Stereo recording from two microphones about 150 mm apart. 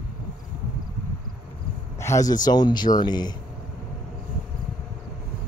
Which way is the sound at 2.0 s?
20° left (ahead or behind).